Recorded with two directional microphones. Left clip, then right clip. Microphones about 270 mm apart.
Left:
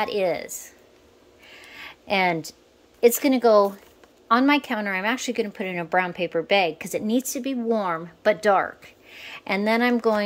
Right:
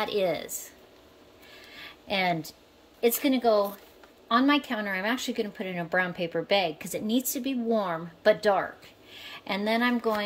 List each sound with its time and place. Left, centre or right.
0.0 s a woman's voice: centre
1.5 s a sound: centre
3.0 s a woman's voice: centre